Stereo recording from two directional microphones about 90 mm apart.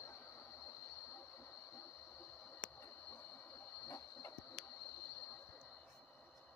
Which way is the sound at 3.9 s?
40° left (ahead or behind).